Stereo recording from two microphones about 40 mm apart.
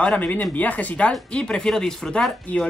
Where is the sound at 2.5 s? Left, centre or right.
Left.